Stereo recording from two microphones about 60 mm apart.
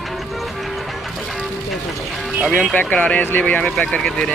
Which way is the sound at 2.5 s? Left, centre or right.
Centre.